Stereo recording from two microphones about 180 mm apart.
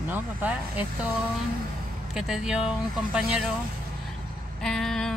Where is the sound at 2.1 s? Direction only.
Centre (ahead or behind).